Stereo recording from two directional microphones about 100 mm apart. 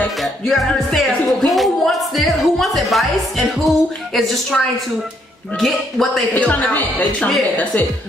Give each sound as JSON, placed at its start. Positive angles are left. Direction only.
{"t": 0.2, "sound": "speech", "side_deg": 0}
{"t": 6.3, "sound": "speech", "side_deg": 15}